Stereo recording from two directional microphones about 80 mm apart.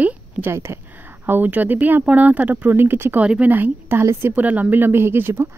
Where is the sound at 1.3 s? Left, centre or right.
Right.